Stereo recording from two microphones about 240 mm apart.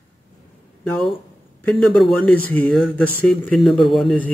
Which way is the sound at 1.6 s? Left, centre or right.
Centre.